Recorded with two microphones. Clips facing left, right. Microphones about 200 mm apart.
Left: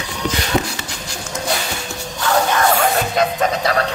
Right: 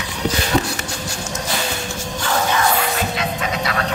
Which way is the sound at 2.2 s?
55° left (ahead or behind).